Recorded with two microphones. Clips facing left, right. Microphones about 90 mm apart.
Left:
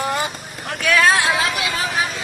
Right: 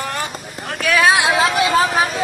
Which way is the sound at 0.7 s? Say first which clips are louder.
Right 1 dB; centre (ahead or behind).